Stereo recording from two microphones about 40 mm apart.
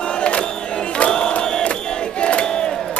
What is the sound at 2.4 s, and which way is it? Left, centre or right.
Battle cry, left.